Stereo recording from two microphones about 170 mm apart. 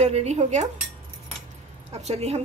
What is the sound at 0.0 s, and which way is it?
Speech, 40° right (ahead or behind).